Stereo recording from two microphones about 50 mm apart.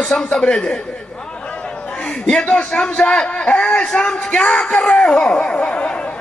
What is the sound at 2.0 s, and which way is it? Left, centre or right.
A man's voice, centre.